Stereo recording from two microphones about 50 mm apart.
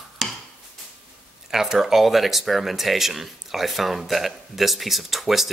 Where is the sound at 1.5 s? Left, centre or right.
Centre.